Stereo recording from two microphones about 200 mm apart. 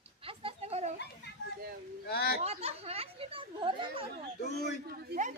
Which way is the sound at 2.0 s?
50° left (ahead or behind).